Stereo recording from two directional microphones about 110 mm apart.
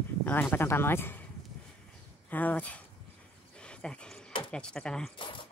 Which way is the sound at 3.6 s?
10° left (ahead or behind).